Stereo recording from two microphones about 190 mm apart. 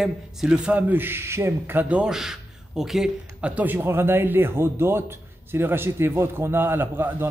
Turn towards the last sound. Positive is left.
turn(degrees=-10)  # may be behind; listen again after turning